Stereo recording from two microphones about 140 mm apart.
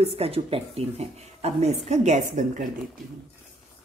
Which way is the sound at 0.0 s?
45° right (ahead or behind).